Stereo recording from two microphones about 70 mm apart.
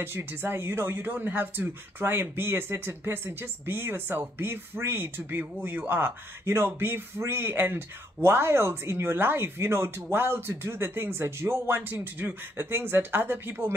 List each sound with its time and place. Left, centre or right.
0.0 s speech: right